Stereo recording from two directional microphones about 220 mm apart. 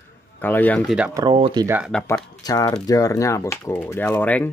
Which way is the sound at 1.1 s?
20° right (ahead or behind).